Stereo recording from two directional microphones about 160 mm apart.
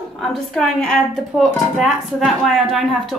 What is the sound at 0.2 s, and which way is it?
Speech, centre (ahead or behind).